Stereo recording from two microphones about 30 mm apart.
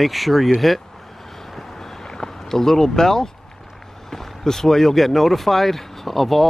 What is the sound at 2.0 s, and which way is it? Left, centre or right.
Speech, centre.